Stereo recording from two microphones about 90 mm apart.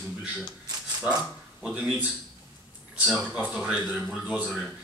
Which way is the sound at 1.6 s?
10° right (ahead or behind).